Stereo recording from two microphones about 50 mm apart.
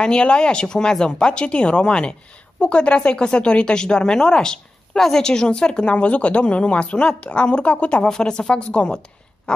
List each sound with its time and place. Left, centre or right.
0.0 s speech: centre